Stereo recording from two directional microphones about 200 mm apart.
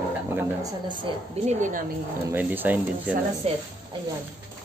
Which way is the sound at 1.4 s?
40° right (ahead or behind).